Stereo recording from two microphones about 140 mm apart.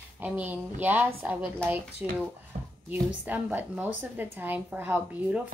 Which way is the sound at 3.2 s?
15° right (ahead or behind).